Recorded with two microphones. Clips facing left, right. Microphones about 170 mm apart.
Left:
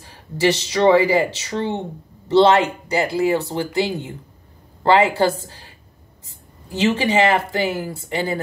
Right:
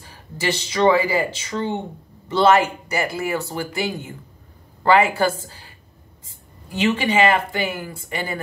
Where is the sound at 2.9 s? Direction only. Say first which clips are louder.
Left 6 dB; 30° left (ahead or behind).